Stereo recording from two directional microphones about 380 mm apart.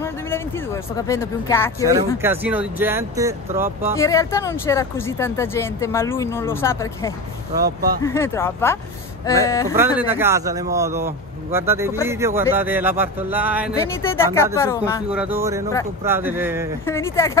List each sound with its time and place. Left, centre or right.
0.9 s speech: centre
2.2 s speech: centre
4.0 s speech: centre
7.6 s speech: right
8.0 s speech: centre
9.8 s speech: centre
14.0 s speech: centre
15.0 s speech: centre
16.8 s speech: centre